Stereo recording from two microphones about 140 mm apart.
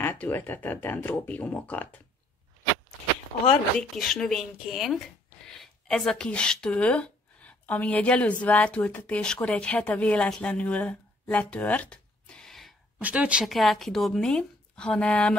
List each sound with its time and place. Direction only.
0.0 s speech: 15° left (ahead or behind)
3.3 s speech: 40° left (ahead or behind)
3.9 s speech: centre (ahead or behind)
13.0 s speech: 10° right (ahead or behind); by 15.3 s 5° left (ahead or behind)